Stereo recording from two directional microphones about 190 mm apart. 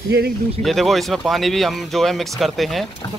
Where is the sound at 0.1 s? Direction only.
60° right (ahead or behind).